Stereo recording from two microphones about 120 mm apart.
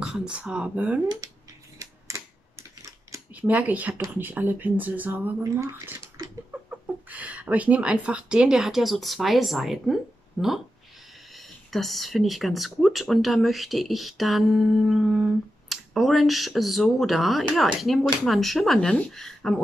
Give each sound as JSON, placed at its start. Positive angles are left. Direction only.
{"t": 0.0, "sound": "a woman's voice", "side_deg": -5}
{"t": 1.8, "sound": "typewriter", "side_deg": -25}
{"t": 3.3, "sound": "a woman's voice", "side_deg": -15}
{"t": 5.4, "sound": "a sound", "side_deg": -25}
{"t": 7.1, "sound": "a woman's voice", "side_deg": -10}